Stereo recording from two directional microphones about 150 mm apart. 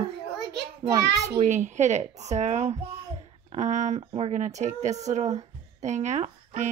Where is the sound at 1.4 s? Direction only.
50° right (ahead or behind).